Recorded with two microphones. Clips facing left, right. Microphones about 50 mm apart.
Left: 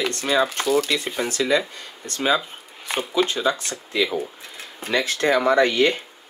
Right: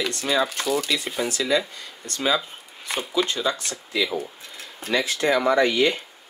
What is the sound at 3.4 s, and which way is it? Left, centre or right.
Speech, left.